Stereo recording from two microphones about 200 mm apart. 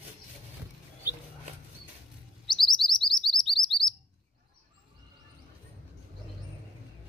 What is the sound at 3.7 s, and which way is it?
Chirp, 25° left (ahead or behind).